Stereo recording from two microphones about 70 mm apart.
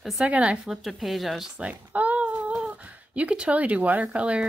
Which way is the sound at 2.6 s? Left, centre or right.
Right.